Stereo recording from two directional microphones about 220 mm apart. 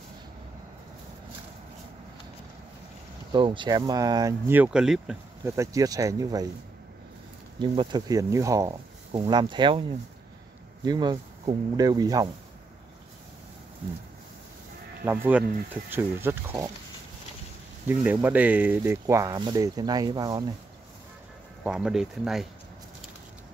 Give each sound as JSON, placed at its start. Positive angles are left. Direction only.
{"t": 3.3, "sound": "speech", "side_deg": -20}
{"t": 5.6, "sound": "speech", "side_deg": -15}
{"t": 7.7, "sound": "speech", "side_deg": -20}
{"t": 10.9, "sound": "speech", "side_deg": -20}
{"t": 15.0, "sound": "speech", "side_deg": -10}
{"t": 17.8, "sound": "speech", "side_deg": -10}
{"t": 21.6, "sound": "speech", "side_deg": -5}